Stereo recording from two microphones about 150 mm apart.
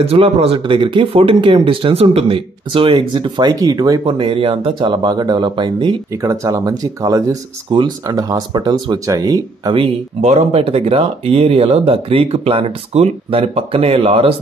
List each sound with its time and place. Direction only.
0.0 s speech: 40° right (ahead or behind)
6.2 s speech: 20° right (ahead or behind)
10.2 s speech: 45° right (ahead or behind)